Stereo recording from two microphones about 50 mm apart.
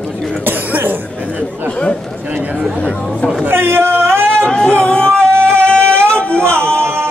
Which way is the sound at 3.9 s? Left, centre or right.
Right.